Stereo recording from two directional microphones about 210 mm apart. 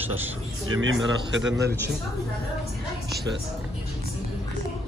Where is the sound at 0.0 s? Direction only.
10° right (ahead or behind).